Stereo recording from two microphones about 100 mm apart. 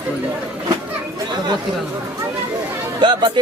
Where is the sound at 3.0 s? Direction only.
50° right (ahead or behind).